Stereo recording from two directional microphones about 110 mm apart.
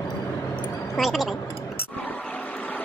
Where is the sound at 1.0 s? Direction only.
Centre (ahead or behind).